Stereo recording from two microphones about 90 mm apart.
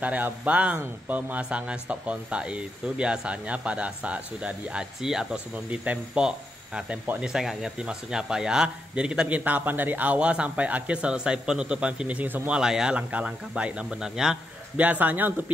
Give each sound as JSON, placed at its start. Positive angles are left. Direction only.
{"t": 0.0, "sound": "speech", "side_deg": -15}
{"t": 12.5, "sound": "speech", "side_deg": -10}
{"t": 14.8, "sound": "speech", "side_deg": -20}